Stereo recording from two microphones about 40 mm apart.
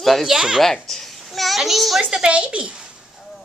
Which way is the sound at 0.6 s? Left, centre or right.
Centre.